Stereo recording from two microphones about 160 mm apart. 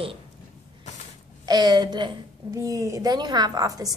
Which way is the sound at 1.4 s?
25° right (ahead or behind).